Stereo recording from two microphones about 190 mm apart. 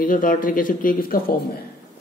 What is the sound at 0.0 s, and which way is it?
Speech, 45° left (ahead or behind).